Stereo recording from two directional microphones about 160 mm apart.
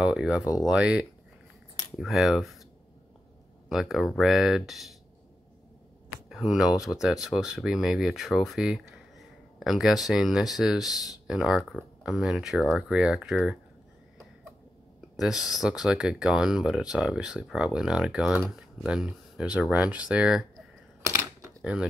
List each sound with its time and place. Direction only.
0.0 s speech: 5° right (ahead or behind)
3.6 s speech: centre (ahead or behind)
6.2 s speech: 5° right (ahead or behind)
15.1 s speech: centre (ahead or behind)
21.0 s a sound: 20° right (ahead or behind)